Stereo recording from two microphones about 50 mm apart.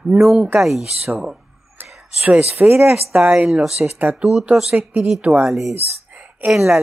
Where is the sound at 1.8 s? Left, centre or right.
Right.